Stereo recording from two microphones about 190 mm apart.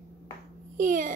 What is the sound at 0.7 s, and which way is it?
Speech, 40° right (ahead or behind).